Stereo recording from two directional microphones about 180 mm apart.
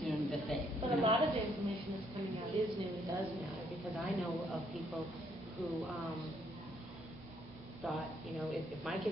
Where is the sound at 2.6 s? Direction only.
35° right (ahead or behind).